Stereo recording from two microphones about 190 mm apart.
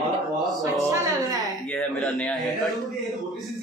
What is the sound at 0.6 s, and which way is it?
Speech, 15° right (ahead or behind).